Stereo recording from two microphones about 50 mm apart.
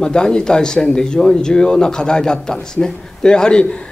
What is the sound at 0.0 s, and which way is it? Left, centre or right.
Speech, centre.